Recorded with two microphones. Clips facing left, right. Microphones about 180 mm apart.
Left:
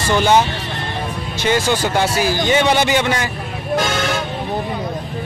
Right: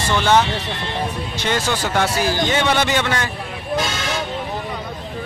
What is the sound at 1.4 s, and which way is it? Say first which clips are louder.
A man's voice: left 5 dB; 5° left (ahead or behind).